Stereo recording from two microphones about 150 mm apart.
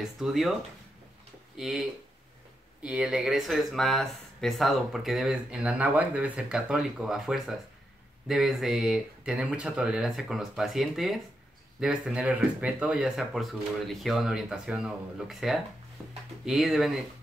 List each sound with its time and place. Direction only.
0.0 s speech: centre (ahead or behind)
1.6 s speech: centre (ahead or behind)
16.0 s a sound: 20° right (ahead or behind)
16.4 s speech: centre (ahead or behind)